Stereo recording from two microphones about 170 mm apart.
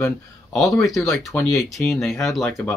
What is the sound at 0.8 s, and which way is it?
Speech, centre (ahead or behind).